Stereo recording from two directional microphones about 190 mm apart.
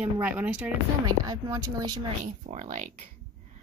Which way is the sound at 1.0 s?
20° right (ahead or behind).